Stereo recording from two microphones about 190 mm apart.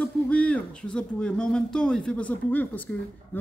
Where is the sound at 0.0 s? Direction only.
5° left (ahead or behind).